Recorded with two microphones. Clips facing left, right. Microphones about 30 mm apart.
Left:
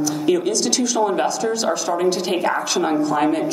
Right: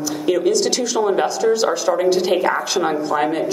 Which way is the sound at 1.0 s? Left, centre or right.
Centre.